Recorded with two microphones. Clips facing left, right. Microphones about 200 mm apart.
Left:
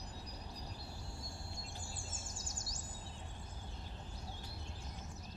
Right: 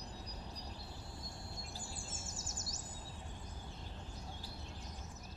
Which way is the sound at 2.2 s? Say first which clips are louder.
Right 1 dB; 25° right (ahead or behind).